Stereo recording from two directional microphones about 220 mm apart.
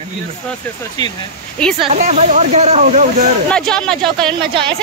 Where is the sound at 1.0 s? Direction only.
20° left (ahead or behind).